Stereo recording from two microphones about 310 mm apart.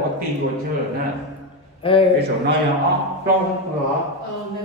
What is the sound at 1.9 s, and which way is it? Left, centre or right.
Speech, centre.